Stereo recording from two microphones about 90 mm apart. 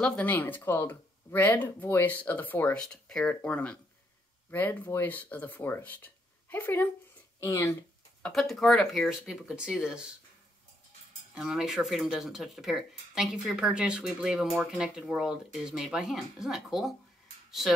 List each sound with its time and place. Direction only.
0.0 s speech: 15° left (ahead or behind)
7.3 s speech: 30° left (ahead or behind)
8.3 s speech: centre (ahead or behind)
11.3 s speech: 10° right (ahead or behind)